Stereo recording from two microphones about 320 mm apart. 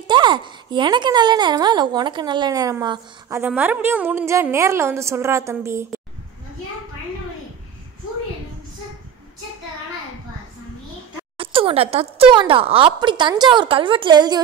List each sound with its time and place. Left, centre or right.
0.0 s speech: centre
11.3 s speech: centre